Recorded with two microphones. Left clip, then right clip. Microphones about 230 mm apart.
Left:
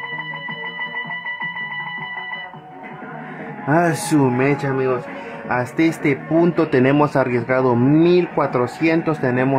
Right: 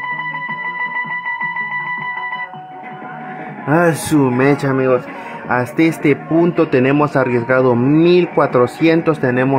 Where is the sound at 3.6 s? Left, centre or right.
Centre.